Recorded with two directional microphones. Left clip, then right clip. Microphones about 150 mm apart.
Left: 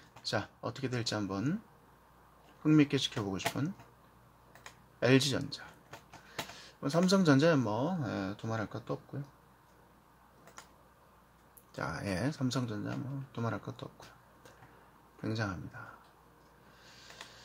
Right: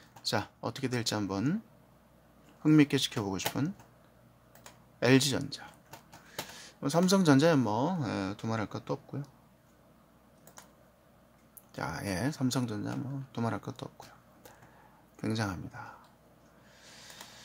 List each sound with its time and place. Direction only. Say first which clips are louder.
0.2 s speech: right 3 dB; 30° right (ahead or behind)
2.6 s speech: right 3 dB; 30° right (ahead or behind)
5.0 s speech: right 2 dB; 25° right (ahead or behind)
11.7 s speech: right 1 dB; 15° right (ahead or behind)
15.1 s speech: right 3 dB; 25° right (ahead or behind)
16.8 s a sound: right 3 dB; 25° right (ahead or behind)